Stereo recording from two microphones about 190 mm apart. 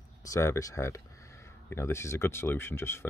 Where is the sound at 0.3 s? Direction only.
15° left (ahead or behind).